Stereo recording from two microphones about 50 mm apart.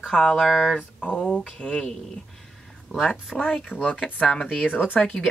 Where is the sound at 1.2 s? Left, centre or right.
Centre.